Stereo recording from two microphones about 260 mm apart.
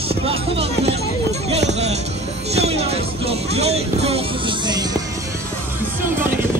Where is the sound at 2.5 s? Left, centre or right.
Right.